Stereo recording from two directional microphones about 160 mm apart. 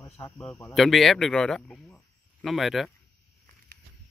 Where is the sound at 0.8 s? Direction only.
Centre (ahead or behind).